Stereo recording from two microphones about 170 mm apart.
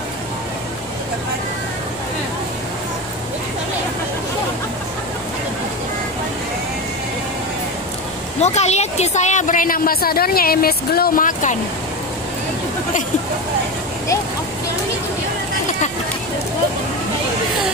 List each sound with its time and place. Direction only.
8.4 s speech: 40° left (ahead or behind)